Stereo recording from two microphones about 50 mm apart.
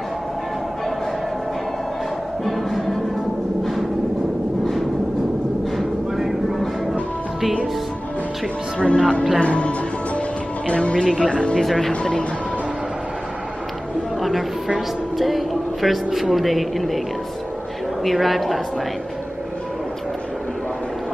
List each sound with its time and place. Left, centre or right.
2.4 s music: centre
5.8 s train: centre
8.7 s speech: centre
9.4 s music: left
10.7 s speech: left
11.6 s speech: centre
11.9 s speech: centre
15.1 s speech: centre
18.0 s speech: centre